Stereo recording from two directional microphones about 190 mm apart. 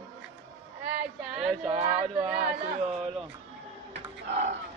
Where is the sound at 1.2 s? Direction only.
5° right (ahead or behind).